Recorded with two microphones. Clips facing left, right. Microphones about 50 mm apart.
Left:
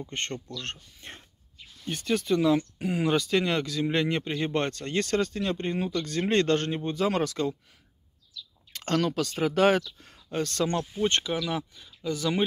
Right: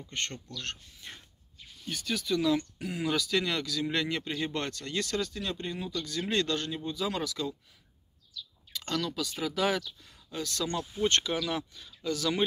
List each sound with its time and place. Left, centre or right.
0.0 s speech: left
8.7 s speech: left
11.1 s speech: left